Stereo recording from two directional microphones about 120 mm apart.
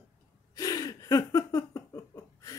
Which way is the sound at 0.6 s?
30° left (ahead or behind).